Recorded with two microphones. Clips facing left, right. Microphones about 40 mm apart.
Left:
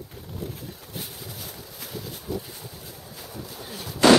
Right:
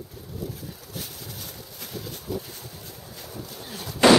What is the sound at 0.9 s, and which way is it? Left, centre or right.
Boat, centre.